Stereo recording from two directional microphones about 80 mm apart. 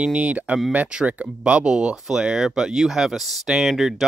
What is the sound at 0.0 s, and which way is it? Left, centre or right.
Speech, centre.